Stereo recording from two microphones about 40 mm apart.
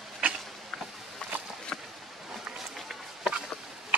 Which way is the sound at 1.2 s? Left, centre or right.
Left.